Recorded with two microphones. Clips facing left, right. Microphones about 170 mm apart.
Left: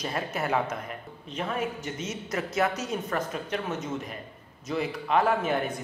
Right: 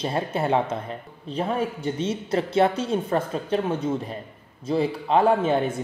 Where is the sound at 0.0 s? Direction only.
30° right (ahead or behind).